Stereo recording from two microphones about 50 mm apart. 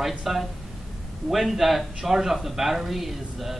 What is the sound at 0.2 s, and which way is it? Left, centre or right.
Speech, centre.